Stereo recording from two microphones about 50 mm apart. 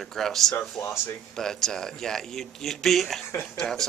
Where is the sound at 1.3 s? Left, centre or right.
Centre.